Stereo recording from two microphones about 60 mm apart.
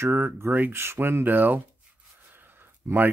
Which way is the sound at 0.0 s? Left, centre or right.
Right.